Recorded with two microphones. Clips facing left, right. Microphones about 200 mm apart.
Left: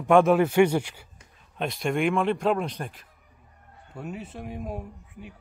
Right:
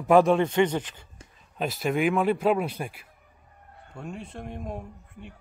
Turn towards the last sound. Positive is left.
turn(degrees=5)  # may be behind; listen again after turning